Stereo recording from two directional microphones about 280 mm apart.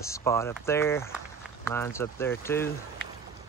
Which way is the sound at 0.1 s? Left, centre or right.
Centre.